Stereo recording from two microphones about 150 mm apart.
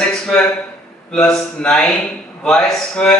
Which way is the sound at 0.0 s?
5° left (ahead or behind).